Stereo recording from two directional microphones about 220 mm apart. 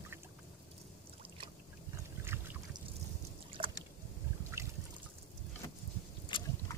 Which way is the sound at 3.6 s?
25° right (ahead or behind).